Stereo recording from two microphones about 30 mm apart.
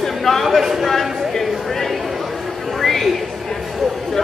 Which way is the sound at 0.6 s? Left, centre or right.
Centre.